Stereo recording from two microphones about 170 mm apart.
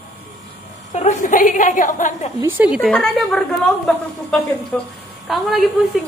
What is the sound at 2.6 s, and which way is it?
A woman's voice, centre (ahead or behind).